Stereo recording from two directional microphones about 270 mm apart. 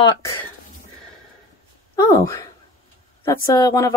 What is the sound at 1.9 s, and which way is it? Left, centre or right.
Speech, centre.